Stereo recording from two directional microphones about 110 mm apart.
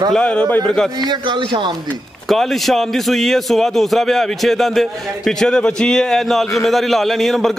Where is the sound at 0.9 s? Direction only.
40° right (ahead or behind).